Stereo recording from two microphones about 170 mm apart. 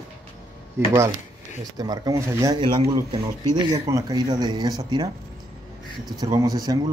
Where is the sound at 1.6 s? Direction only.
20° right (ahead or behind).